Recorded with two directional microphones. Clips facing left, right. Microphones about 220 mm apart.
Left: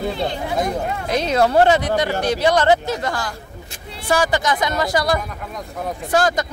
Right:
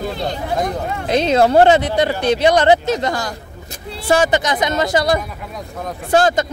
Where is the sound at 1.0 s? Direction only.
25° right (ahead or behind).